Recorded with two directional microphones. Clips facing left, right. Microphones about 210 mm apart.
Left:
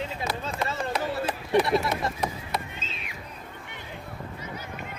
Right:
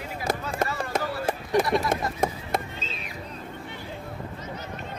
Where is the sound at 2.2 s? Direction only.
40° right (ahead or behind).